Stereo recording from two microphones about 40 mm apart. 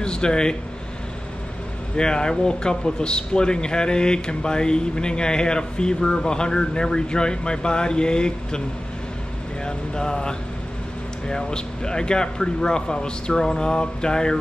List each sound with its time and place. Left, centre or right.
0.0 s speech: left
2.0 s a man's voice: centre
9.7 s a man's voice: centre